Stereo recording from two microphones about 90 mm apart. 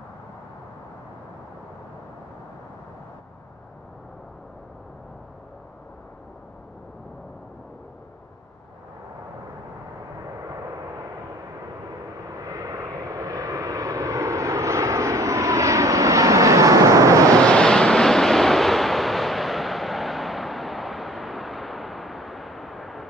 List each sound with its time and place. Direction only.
10.4 s vehicle: 35° right (ahead or behind)
12.4 s vehicle: 40° right (ahead or behind)
17.5 s vehicle: 10° left (ahead or behind)